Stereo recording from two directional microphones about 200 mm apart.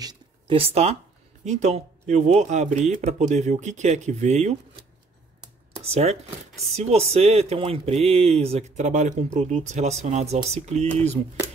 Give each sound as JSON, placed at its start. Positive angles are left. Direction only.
{"t": 0.0, "sound": "a sound", "side_deg": -25}
{"t": 1.4, "sound": "speech", "side_deg": -35}
{"t": 5.9, "sound": "speech", "side_deg": -30}